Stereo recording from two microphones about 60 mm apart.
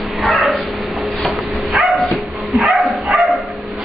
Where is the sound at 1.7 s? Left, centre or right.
Centre.